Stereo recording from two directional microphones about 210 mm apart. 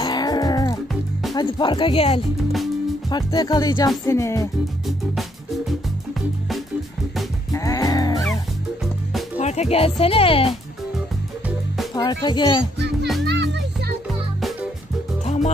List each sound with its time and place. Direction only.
0.0 s music: 20° left (ahead or behind)
1.3 s speech: 20° left (ahead or behind)
4.0 s music: 15° left (ahead or behind)
7.5 s music: 15° left (ahead or behind)
9.4 s speech: 30° left (ahead or behind)
11.4 s music: centre (ahead or behind)
11.9 s speech: 20° left (ahead or behind)
13.2 s children playing: 55° right (ahead or behind)
15.2 s music: 35° left (ahead or behind)